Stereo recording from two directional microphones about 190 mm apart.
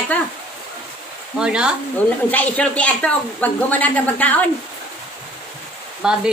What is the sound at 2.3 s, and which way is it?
A woman's voice, 5° left (ahead or behind).